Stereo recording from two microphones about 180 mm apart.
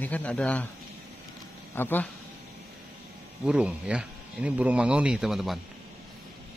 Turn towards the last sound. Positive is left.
turn(degrees=0)  # may be behind; listen again after turning